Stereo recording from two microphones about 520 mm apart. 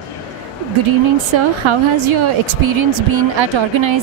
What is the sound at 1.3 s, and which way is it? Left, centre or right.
A woman's voice, right.